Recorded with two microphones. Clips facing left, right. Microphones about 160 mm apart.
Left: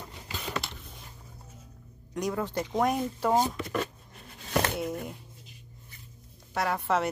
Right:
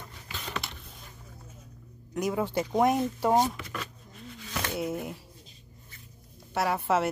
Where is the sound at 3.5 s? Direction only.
40° left (ahead or behind).